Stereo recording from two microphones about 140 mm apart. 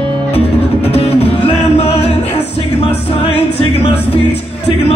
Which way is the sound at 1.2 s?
45° left (ahead or behind).